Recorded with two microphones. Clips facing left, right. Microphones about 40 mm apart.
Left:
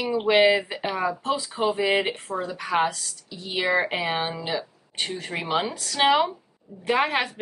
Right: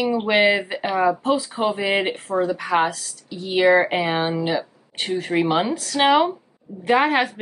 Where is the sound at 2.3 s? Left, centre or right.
Right.